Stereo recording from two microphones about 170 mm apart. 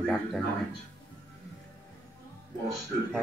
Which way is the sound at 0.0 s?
5° left (ahead or behind).